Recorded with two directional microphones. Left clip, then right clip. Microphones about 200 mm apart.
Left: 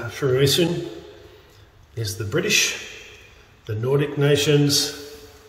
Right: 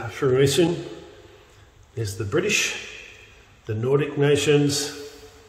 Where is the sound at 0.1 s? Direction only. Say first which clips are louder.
Even; 40° right (ahead or behind).